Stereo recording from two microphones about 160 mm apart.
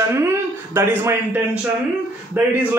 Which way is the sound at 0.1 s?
15° right (ahead or behind).